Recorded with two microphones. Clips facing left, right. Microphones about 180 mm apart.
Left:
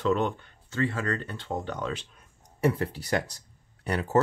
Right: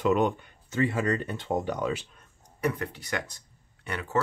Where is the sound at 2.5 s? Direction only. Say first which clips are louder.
Left 4 dB; 30° left (ahead or behind).